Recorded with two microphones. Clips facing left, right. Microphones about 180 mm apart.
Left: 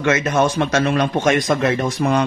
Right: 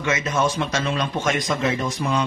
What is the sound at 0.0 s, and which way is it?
A man's voice, 65° left (ahead or behind).